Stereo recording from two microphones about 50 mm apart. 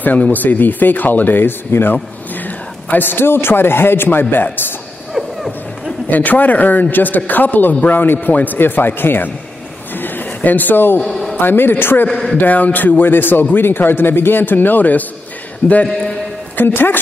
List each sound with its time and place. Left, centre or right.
0.0 s a man's voice: left
5.1 s run: centre
6.0 s a man's voice: left
9.9 s a sound: left
11.0 s a sound: centre
11.3 s a man's voice: left
12.1 s speech: centre
12.4 s a man's voice: left
16.5 s a man's voice: left